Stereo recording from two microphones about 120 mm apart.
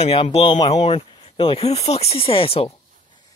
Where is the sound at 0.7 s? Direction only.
55° left (ahead or behind).